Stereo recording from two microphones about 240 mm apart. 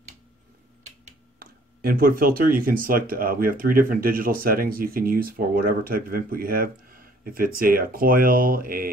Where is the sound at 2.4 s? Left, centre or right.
Right.